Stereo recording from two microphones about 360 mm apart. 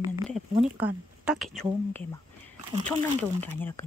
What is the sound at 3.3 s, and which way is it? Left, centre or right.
Speech, centre.